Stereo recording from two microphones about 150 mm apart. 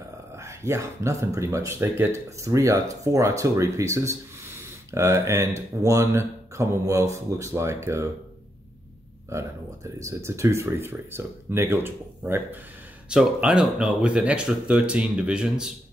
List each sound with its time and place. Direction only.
0.4 s speech: 20° right (ahead or behind)
9.9 s speech: 20° right (ahead or behind)